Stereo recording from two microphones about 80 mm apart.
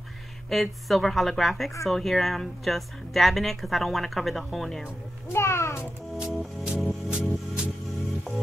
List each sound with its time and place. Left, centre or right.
0.5 s speech: centre
5.3 s speech: left
6.1 s music: centre